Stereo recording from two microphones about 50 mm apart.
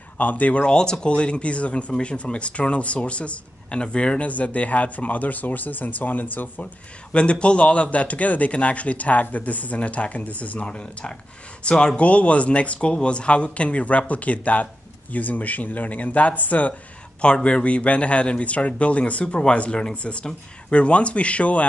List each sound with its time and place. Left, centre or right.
0.2 s speech: left
0.7 s speech: centre; by 6.7 s left
7.1 s speech: left
17.2 s speech: left